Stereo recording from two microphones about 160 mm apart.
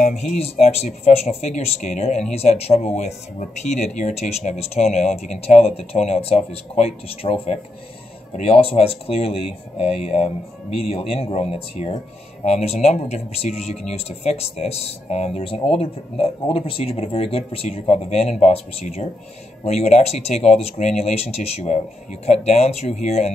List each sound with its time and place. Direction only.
0.2 s speech: 40° left (ahead or behind)